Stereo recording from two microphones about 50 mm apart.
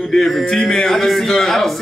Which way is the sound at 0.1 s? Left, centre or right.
Centre.